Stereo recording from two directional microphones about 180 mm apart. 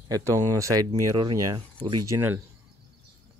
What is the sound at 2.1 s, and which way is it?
Speech, 10° right (ahead or behind).